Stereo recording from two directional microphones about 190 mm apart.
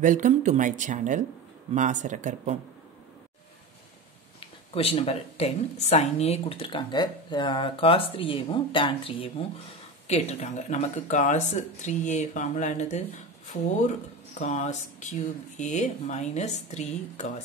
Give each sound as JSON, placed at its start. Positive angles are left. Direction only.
{"t": 0.0, "sound": "speech", "side_deg": -40}
{"t": 4.4, "sound": "speech", "side_deg": 30}